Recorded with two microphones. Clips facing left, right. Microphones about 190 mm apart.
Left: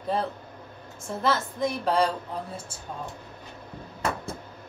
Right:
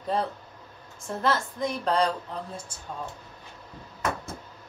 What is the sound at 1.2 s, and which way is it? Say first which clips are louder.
Speech: left 1 dB; 5° left (ahead or behind).